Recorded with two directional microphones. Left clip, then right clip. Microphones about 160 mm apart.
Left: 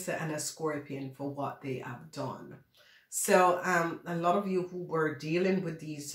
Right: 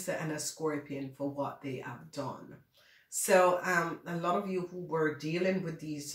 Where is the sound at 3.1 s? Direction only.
35° left (ahead or behind).